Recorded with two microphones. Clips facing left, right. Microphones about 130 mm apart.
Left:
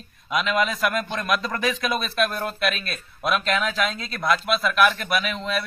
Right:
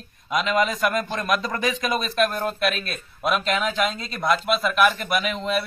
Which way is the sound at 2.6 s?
Centre (ahead or behind).